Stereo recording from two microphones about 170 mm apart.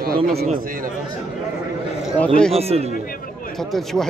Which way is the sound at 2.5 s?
35° right (ahead or behind).